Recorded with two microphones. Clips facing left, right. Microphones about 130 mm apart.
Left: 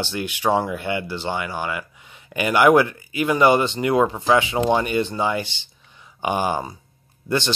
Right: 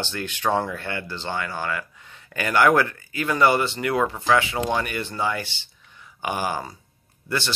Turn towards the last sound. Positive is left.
turn(degrees=20)  # may be behind; listen again after turning